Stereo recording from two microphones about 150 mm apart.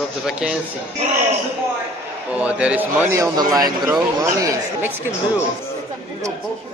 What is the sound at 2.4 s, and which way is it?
A man's voice, 10° right (ahead or behind).